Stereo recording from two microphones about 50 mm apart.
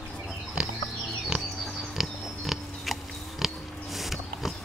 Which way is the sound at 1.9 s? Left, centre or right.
Centre.